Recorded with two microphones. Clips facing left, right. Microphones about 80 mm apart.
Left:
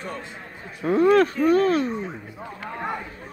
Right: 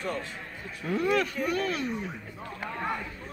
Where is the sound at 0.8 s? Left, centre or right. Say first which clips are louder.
Left 10 dB; left.